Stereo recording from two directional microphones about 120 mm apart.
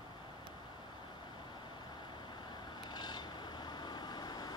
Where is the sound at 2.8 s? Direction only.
35° left (ahead or behind).